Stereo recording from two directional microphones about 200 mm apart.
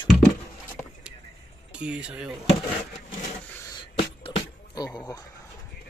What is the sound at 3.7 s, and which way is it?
Beatboxing, 25° left (ahead or behind).